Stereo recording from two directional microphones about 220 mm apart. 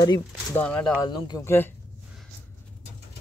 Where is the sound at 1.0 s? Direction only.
20° left (ahead or behind).